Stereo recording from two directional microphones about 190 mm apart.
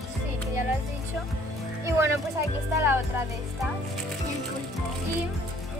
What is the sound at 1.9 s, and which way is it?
Speech, 15° right (ahead or behind).